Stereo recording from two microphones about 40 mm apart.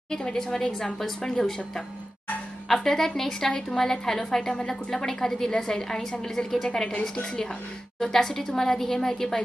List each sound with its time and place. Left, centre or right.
0.1 s a woman's voice: centre
2.7 s a woman's voice: centre
6.9 s a woman's voice: left
8.0 s a woman's voice: centre